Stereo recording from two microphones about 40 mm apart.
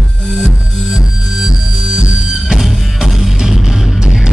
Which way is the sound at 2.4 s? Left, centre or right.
Centre.